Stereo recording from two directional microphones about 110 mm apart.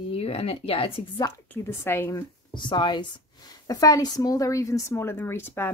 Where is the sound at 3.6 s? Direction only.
35° left (ahead or behind).